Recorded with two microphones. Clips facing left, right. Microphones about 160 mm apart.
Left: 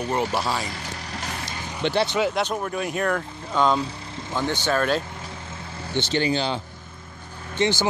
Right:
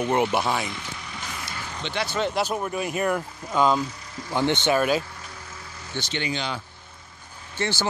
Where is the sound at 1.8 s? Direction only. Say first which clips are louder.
Left 9 dB; 55° left (ahead or behind).